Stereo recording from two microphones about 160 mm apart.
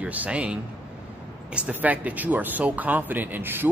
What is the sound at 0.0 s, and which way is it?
A man's voice, 10° right (ahead or behind).